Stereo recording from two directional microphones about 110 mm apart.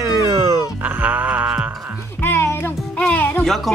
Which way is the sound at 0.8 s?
15° right (ahead or behind).